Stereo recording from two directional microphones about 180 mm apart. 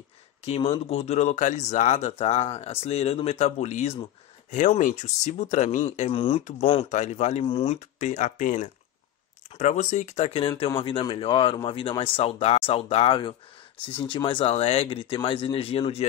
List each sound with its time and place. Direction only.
0.5 s speech: 35° left (ahead or behind)